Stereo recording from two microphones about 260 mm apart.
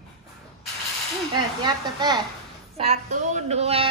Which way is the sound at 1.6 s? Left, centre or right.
Centre.